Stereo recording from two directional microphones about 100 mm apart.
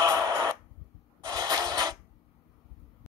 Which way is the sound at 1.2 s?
40° right (ahead or behind).